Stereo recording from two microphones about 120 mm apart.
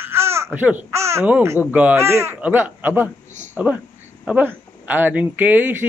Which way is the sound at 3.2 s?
80° right.